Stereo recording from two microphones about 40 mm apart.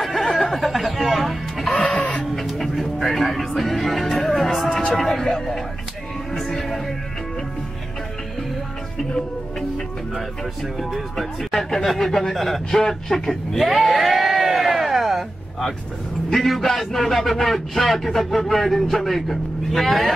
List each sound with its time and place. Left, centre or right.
0.0 s music: centre
10.8 s speech: centre
16.3 s a man's voice: centre